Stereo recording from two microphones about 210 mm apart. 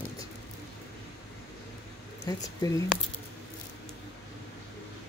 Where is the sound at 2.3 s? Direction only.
20° left (ahead or behind).